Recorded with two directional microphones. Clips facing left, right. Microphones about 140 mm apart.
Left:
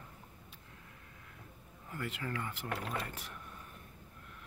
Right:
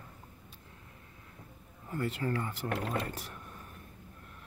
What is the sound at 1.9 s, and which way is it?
Speech, 35° right (ahead or behind).